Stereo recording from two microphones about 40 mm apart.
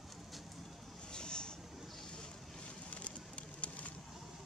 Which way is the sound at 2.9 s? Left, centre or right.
Left.